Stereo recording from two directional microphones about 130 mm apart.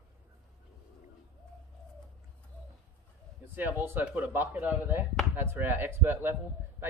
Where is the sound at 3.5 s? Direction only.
15° right (ahead or behind).